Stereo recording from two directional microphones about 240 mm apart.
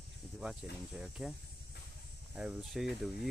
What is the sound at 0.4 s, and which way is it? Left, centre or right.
Speech, centre.